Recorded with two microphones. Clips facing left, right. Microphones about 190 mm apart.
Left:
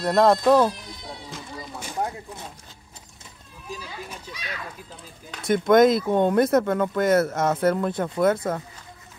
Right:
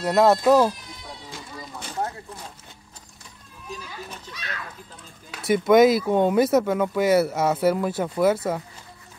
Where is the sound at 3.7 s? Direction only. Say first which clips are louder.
Left 1 dB; 10° left (ahead or behind).